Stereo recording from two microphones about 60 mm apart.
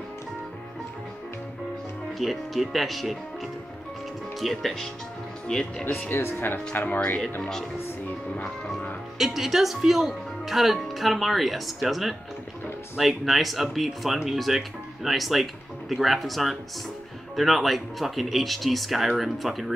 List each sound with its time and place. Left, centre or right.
2.1 s speech: centre
4.4 s speech: centre
6.0 s speech: left
9.2 s speech: centre